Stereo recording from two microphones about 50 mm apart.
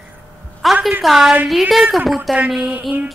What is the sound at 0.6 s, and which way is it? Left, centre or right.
Speech, centre.